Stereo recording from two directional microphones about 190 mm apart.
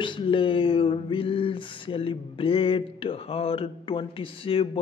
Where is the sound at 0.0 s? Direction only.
25° left (ahead or behind).